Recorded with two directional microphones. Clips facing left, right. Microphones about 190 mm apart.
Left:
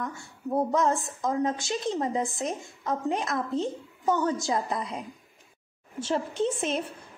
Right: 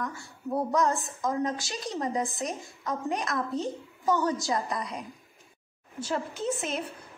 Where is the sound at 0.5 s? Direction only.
20° left (ahead or behind).